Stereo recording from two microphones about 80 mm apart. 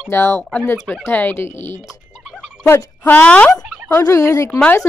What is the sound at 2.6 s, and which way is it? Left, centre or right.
Speech, left.